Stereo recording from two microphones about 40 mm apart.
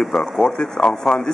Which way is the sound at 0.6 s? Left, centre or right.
Left.